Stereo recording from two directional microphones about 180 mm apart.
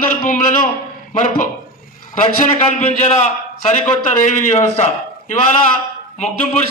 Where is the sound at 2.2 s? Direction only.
40° left (ahead or behind).